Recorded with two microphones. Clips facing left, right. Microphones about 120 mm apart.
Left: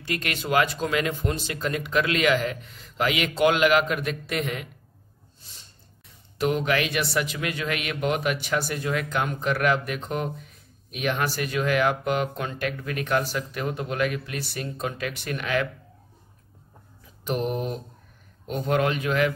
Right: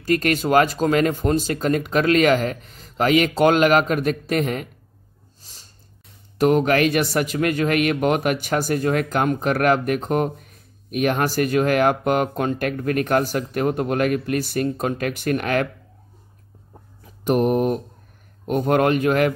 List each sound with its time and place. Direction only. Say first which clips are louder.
0.0 s a man's voice: right 10 dB; 45° right (ahead or behind)
5.4 s dog: right 1 dB; 40° right (ahead or behind)
6.3 s a man's voice: right 7 dB; 45° right (ahead or behind)
17.2 s a man's voice: right 9 dB; 50° right (ahead or behind)